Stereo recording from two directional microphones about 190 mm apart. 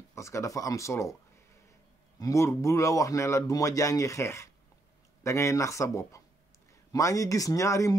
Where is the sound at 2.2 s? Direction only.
15° left (ahead or behind).